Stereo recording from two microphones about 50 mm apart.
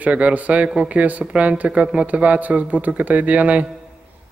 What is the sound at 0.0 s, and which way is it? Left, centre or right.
Speech, right.